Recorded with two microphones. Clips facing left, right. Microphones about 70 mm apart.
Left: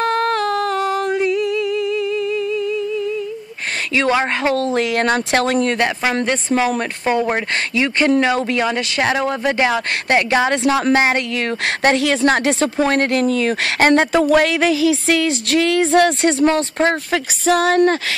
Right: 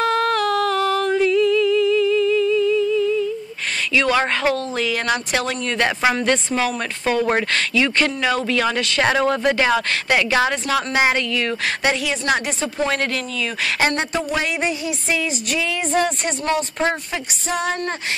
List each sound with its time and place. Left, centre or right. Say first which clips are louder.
0.0 s humming: left 1 dB; left
1.7 s humming: right 3 dB; left
4.1 s speech: left 2 dB; left
4.6 s speech: left 5 dB; left
6.2 s a woman's voice: left 2 dB; centre
7.7 s a woman's voice: left 6 dB; left
8.6 s speech: left 1 dB; centre
9.0 s speech: right 1 dB; centre
10.0 s a woman's voice: left 4 dB; left
12.9 s speech: left 7 dB; left
14.1 s a sound: left 8 dB; left
17.1 s a sound: left 8 dB; left